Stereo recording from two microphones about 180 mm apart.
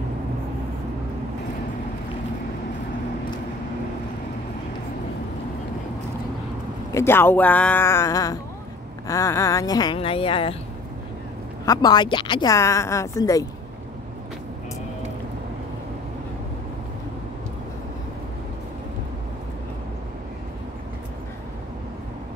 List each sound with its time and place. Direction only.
6.9 s a man's voice: 15° left (ahead or behind); by 10.5 s 30° left (ahead or behind)
11.6 s speech: 20° left (ahead or behind)